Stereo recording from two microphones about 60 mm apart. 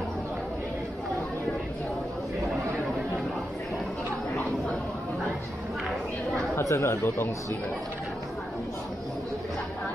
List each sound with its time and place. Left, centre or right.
6.6 s speech: left